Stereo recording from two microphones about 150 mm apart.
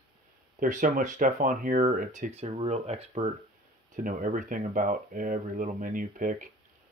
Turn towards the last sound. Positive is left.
turn(degrees=-65)  # may be behind; listen again after turning